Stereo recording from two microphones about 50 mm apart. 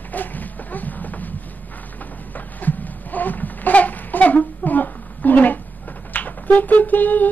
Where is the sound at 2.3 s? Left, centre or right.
Left.